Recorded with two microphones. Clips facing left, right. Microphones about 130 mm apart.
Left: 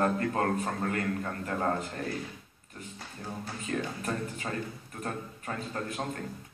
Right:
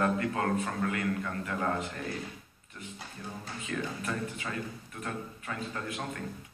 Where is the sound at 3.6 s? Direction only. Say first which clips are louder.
Left 2 dB; 40° left (ahead or behind).